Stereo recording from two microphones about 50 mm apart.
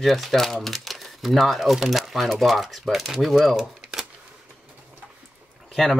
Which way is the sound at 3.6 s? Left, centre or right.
Centre.